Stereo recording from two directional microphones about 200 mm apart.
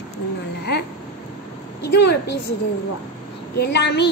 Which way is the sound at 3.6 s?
55° left (ahead or behind).